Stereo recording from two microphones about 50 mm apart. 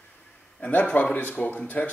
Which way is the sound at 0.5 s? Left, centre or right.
Left.